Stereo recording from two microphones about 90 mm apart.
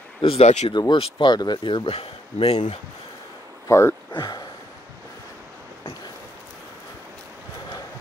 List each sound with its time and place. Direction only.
0.2 s speech: 75° left (ahead or behind)
3.6 s speech: 30° left (ahead or behind)
4.1 s a sound: 50° left (ahead or behind)